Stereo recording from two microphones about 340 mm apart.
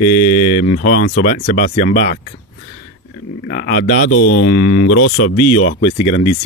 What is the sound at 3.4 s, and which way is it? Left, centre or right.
Speech, left.